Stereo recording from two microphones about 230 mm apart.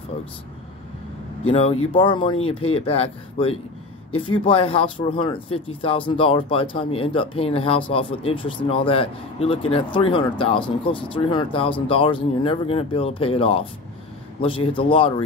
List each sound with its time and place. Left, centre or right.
1.4 s speech: left